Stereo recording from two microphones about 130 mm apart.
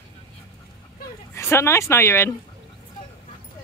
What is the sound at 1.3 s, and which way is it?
Speech, 20° left (ahead or behind).